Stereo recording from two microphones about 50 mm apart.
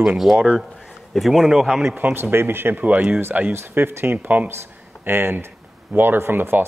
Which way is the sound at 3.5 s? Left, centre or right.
Right.